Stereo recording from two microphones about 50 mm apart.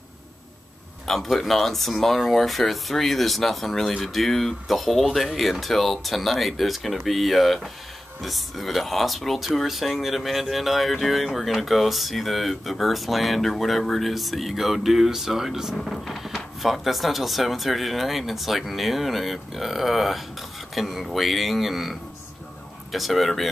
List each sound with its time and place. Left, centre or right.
1.0 s speech: centre
15.8 s speech: centre